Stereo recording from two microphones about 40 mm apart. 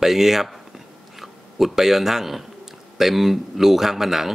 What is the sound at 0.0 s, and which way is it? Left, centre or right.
A man's voice, centre.